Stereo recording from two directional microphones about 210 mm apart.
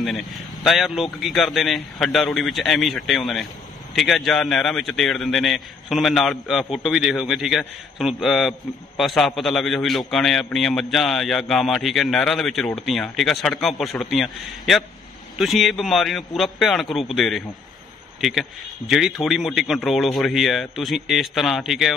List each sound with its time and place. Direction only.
0.0 s a man's voice: centre (ahead or behind)